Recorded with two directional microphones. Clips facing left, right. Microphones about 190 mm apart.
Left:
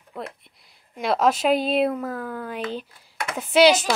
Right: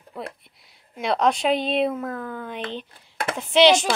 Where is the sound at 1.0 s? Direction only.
5° left (ahead or behind).